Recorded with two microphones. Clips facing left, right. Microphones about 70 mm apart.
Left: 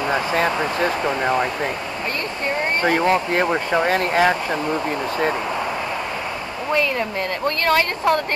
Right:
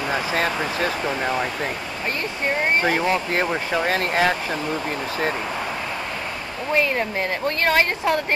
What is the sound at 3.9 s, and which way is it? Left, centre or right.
Speech, left.